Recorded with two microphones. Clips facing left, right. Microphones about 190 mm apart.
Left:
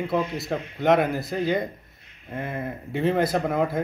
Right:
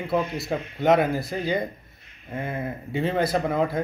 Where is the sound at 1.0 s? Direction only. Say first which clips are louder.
Right 1 dB; 20° left (ahead or behind).